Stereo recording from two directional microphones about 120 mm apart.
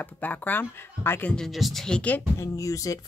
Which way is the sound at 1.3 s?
Centre (ahead or behind).